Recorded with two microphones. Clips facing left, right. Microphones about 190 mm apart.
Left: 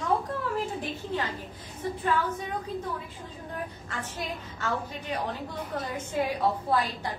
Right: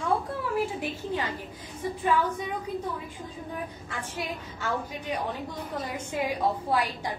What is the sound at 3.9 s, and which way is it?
Speech, 10° right (ahead or behind).